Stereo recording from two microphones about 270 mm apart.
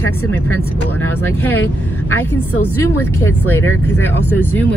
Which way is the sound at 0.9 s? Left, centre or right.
Left.